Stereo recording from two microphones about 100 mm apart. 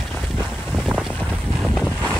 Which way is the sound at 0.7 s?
Centre (ahead or behind).